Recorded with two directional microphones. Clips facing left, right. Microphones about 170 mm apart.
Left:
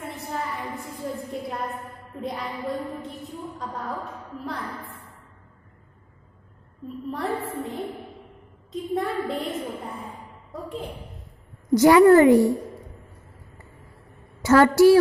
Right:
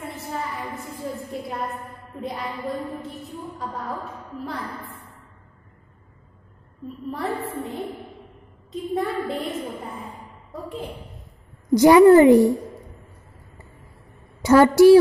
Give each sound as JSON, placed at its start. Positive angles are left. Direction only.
{"t": 1.3, "sound": "a sound", "side_deg": 0}
{"t": 2.1, "sound": "a woman's voice", "side_deg": 0}
{"t": 7.1, "sound": "a woman's voice", "side_deg": 0}
{"t": 8.9, "sound": "a woman's voice", "side_deg": 0}
{"t": 11.7, "sound": "a woman's voice", "side_deg": -15}
{"t": 14.4, "sound": "a woman's voice", "side_deg": -15}